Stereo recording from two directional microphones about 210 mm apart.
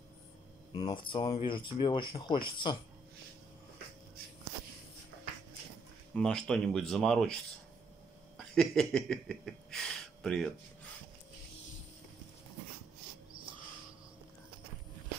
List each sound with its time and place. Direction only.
0.7 s speech: 25° left (ahead or behind)
6.1 s speech: 5° left (ahead or behind)
8.5 s speech: 5° left (ahead or behind)